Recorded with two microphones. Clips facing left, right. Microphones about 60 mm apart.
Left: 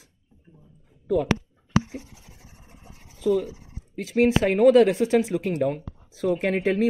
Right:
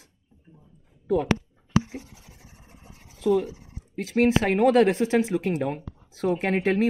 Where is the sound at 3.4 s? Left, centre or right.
Right.